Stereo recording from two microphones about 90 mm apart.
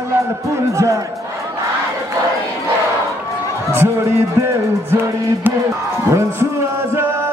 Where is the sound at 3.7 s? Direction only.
25° right (ahead or behind).